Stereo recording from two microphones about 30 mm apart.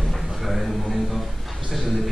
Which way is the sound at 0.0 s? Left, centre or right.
Centre.